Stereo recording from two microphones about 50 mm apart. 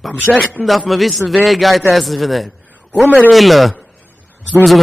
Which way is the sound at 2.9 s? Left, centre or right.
Left.